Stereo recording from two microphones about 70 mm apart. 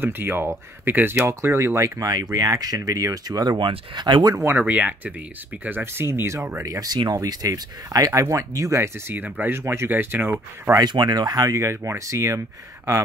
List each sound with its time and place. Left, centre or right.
0.0 s speech: right
2.0 s speech: right
2.3 s speech: right
4.4 s speech: right
6.6 s speech: right
9.1 s speech: right
10.8 s speech: right
11.5 s speech: right